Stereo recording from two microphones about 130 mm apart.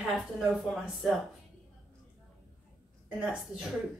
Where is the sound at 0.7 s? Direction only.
Centre (ahead or behind).